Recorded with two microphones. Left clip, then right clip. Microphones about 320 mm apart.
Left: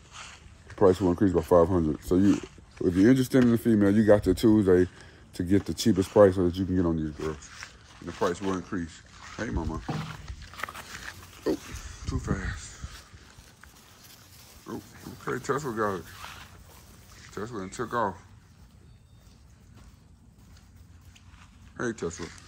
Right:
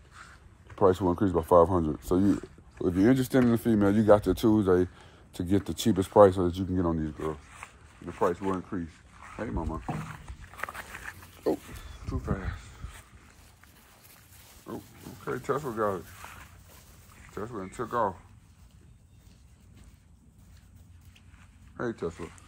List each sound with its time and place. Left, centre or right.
0.7 s speech: centre
7.0 s speech: centre
7.6 s speech: centre
10.2 s a sound: centre
14.7 s pig: centre
15.2 s speech: centre
22.0 s speech: centre